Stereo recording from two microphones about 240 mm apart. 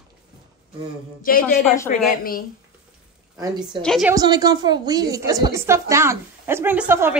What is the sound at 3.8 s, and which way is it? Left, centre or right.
Speech, centre.